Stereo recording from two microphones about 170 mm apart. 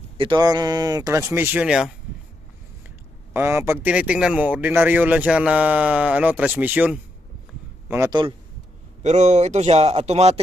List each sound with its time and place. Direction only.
0.2 s speech: 25° right (ahead or behind); by 1.9 s 5° right (ahead or behind)
3.3 s speech: 15° right (ahead or behind)
8.1 s speech: 25° right (ahead or behind)
9.0 s speech: 40° right (ahead or behind)